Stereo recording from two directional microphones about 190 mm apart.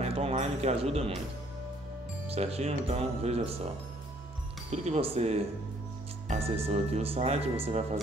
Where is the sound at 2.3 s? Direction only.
30° right (ahead or behind).